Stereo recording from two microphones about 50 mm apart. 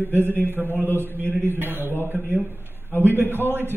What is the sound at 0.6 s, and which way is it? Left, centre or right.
Speech, right.